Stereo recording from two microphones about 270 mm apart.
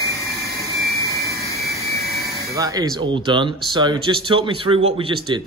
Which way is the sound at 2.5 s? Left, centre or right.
Centre.